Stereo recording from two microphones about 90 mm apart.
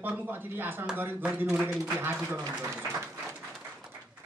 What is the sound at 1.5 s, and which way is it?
Speech, 5° right (ahead or behind).